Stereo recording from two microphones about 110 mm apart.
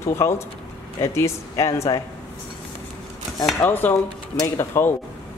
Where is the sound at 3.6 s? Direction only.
15° left (ahead or behind).